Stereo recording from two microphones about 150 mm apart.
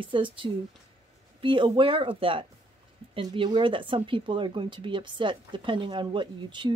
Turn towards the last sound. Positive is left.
turn(degrees=-30)  # may be behind; listen again after turning